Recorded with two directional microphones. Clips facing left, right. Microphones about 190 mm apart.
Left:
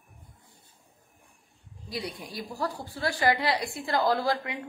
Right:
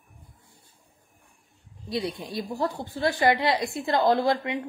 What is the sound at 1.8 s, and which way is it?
A woman's voice, 25° right (ahead or behind).